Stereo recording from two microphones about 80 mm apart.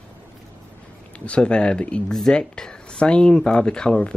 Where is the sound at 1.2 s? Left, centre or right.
Centre.